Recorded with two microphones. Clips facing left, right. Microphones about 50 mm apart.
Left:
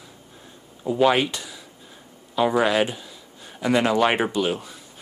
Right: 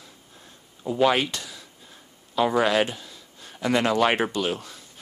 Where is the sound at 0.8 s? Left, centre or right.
Centre.